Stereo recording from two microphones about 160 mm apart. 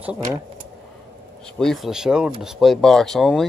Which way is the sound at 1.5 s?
Centre (ahead or behind).